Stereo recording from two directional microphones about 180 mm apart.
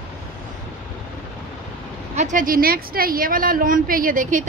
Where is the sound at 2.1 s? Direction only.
45° right (ahead or behind).